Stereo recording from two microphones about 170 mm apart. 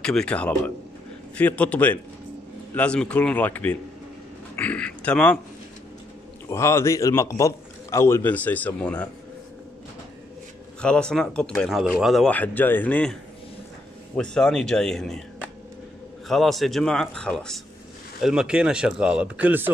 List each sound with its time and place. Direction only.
0.0 s a man's voice: 5° left (ahead or behind)
6.5 s a man's voice: 15° left (ahead or behind)
10.8 s speech: 5° left (ahead or behind)